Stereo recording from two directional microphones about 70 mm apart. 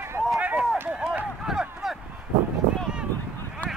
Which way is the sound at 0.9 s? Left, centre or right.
Centre.